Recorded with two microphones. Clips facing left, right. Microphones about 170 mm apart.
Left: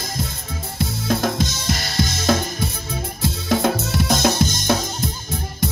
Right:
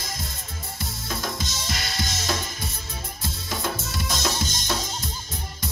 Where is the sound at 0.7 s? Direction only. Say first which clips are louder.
Left 12 dB; 65° left (ahead or behind).